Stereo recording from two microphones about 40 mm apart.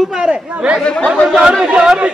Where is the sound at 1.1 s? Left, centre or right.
Centre.